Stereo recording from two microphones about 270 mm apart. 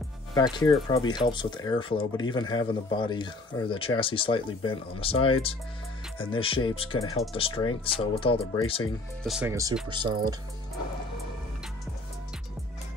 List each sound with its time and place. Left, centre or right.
0.3 s speech: centre
9.2 s speech: centre